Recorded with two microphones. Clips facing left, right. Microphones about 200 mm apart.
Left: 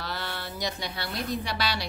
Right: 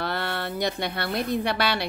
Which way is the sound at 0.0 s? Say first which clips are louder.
Right 7 dB; 60° right (ahead or behind).